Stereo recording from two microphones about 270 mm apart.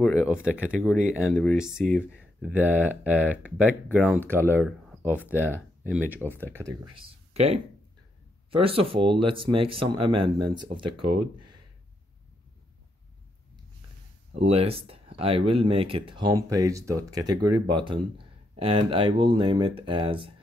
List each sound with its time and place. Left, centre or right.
0.0 s speech: centre
5.4 s speech: centre
6.0 s speech: centre
7.3 s speech: right
11.1 s a sound: right
14.3 s speech: right